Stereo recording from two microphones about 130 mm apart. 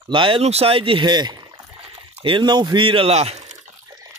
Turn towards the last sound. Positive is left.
turn(degrees=-55)  # may be behind; listen again after turning